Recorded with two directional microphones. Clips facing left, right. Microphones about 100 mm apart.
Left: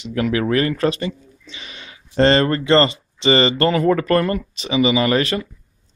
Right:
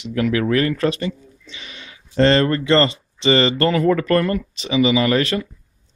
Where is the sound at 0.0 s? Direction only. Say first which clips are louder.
Even; 25° left (ahead or behind).